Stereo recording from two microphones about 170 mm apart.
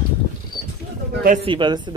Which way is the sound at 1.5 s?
25° right (ahead or behind).